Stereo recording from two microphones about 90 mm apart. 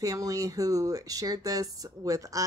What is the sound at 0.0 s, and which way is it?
A woman's voice, 40° right (ahead or behind).